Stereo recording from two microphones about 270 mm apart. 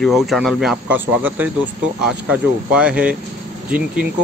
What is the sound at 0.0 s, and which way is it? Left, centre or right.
Speech, centre.